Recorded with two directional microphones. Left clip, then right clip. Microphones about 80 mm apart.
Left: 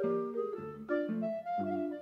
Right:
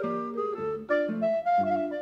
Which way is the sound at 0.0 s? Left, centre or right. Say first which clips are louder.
Right 3 dB; left.